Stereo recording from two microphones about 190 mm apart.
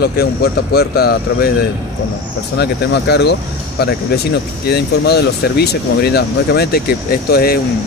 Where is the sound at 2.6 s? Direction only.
60° left (ahead or behind).